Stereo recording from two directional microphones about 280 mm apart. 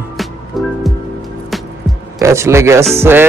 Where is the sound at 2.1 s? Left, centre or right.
Centre.